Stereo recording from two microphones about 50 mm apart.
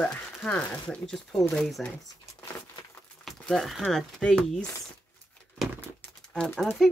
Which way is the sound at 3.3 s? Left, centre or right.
Centre.